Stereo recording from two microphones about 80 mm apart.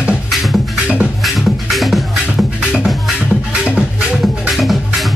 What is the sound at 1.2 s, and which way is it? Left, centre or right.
Music, centre.